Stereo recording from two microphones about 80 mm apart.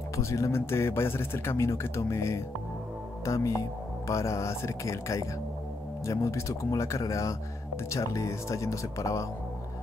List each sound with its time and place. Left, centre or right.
0.1 s speech: left